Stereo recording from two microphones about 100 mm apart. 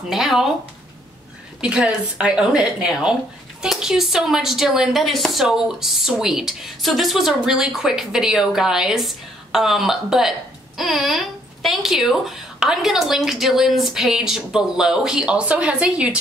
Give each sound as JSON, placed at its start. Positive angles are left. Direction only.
{"t": 0.1, "sound": "a woman's voice", "side_deg": -5}
{"t": 1.6, "sound": "a woman's voice", "side_deg": -10}